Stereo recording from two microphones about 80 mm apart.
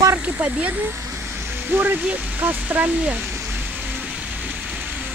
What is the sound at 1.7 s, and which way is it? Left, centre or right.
Speech, right.